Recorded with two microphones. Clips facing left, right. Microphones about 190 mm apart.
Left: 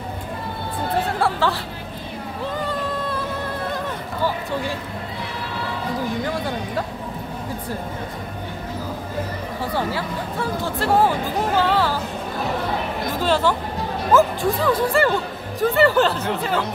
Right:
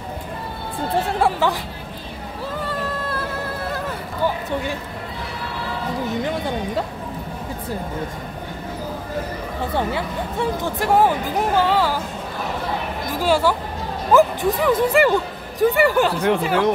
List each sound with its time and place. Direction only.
1.2 s speech: 15° right (ahead or behind)
2.6 s a sound: 5° right (ahead or behind)
9.8 s speech: 20° right (ahead or behind)
13.2 s speech: 10° right (ahead or behind)